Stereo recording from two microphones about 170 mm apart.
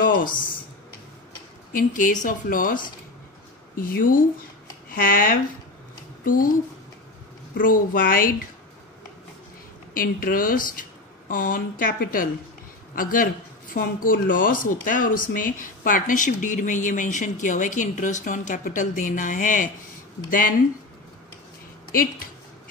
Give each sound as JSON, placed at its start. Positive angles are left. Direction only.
{"t": 1.7, "sound": "speech", "side_deg": 55}
{"t": 7.5, "sound": "speech", "side_deg": 55}
{"t": 9.9, "sound": "speech", "side_deg": 55}